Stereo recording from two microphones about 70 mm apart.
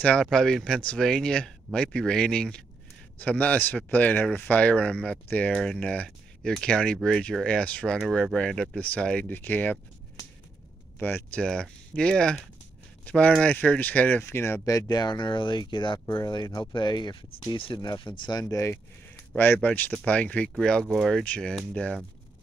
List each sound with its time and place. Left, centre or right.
0.2 s speech: centre
9.3 s speech: left
11.0 s speech: left
11.3 s speech: centre; by 14.2 s left
14.2 s speech: left
14.9 s speech: left
16.3 s speech: left
18.4 s speech: left
19.3 s speech: left; by 20.8 s centre
20.8 s speech: centre
21.2 s speech: centre